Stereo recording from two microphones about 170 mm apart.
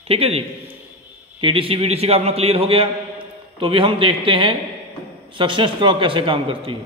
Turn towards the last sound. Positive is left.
turn(degrees=-30)  # may be behind; listen again after turning